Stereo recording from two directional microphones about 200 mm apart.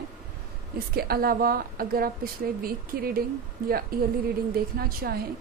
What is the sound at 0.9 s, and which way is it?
Speech, 50° right (ahead or behind).